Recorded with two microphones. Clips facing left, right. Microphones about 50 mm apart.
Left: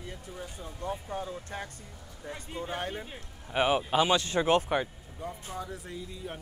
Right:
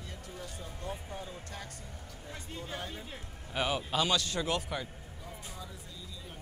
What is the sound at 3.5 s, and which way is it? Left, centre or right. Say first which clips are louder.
Speech: left 6 dB; left.